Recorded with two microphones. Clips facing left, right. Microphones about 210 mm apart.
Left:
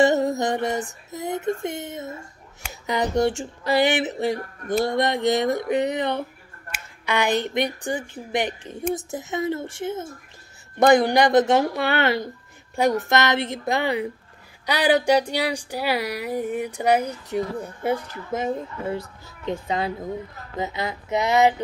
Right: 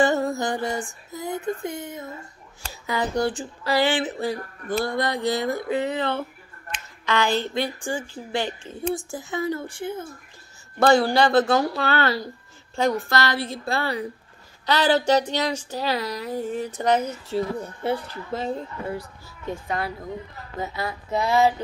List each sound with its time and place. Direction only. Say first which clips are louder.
0.0 s speech: left 2 dB; 20° left (ahead or behind)
2.7 s a sound: left 2 dB; 20° left (ahead or behind)
3.2 s speech: left 3 dB; 25° left (ahead or behind)